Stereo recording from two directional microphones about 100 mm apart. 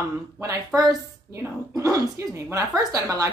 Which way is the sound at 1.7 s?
35° right (ahead or behind).